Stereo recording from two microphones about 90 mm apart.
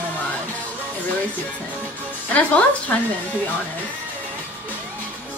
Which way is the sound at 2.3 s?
15° left (ahead or behind).